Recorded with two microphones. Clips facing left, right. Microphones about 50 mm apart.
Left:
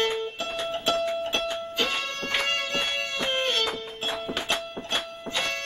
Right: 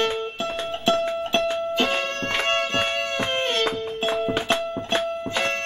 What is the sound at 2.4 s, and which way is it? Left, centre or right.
Music, right.